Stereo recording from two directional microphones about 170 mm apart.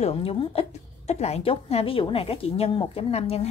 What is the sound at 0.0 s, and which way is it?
A woman's voice, 35° left (ahead or behind).